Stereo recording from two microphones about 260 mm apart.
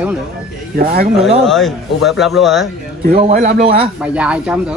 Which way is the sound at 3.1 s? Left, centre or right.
Right.